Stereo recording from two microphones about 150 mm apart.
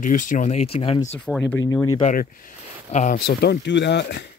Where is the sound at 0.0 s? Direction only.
60° left (ahead or behind); by 1.1 s 40° left (ahead or behind).